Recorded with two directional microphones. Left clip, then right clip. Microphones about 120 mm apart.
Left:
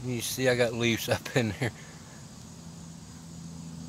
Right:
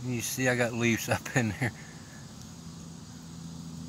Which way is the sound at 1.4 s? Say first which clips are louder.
Even; 25° left (ahead or behind).